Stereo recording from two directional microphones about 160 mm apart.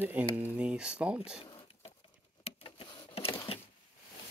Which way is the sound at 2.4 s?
35° left (ahead or behind).